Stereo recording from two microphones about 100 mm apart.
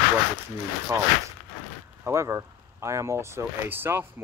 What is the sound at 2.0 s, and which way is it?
Speech, 25° right (ahead or behind).